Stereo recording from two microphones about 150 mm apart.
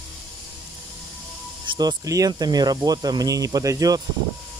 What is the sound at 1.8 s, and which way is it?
Speech, 25° right (ahead or behind).